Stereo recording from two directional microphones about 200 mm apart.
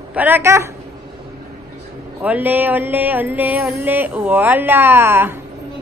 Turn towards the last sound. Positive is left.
turn(degrees=-10)  # may be behind; listen again after turning